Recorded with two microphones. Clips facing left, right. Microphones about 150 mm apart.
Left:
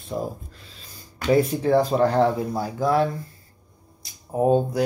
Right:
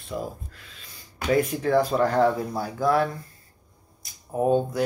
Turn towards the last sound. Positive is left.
turn(degrees=30)  # may be behind; listen again after turning